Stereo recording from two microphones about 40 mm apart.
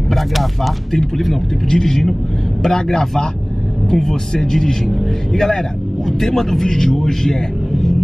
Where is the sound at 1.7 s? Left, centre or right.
Centre.